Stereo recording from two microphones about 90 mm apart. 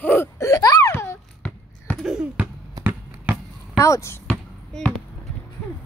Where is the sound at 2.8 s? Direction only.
45° right (ahead or behind).